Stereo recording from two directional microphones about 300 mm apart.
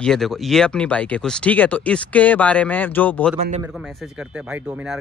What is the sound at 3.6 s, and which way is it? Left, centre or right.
Speech, centre.